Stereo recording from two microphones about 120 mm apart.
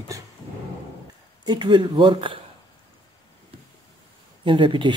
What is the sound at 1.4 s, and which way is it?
Speech, 40° right (ahead or behind).